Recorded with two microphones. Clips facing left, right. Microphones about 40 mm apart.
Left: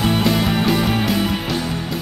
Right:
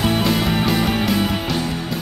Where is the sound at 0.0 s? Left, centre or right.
Centre.